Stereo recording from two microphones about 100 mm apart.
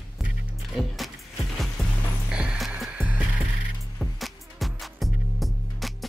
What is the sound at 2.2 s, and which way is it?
Music, 10° right (ahead or behind).